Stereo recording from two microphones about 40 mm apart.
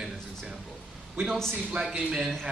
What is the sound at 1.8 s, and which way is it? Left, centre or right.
Speech, right.